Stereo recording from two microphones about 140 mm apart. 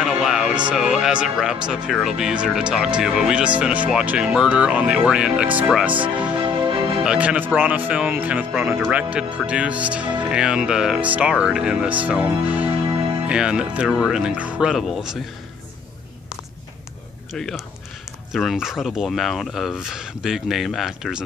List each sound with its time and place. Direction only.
0.0 s music: 5° right (ahead or behind)
0.7 s speech: 5° right (ahead or behind)
5.9 s speech: 35° right (ahead or behind)
7.1 s speech: 10° right (ahead or behind)
17.3 s speech: 5° left (ahead or behind)